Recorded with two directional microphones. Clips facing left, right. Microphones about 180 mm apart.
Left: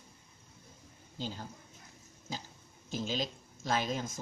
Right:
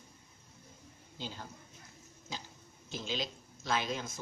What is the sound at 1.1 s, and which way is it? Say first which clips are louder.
Speech: left 4 dB; 40° left (ahead or behind).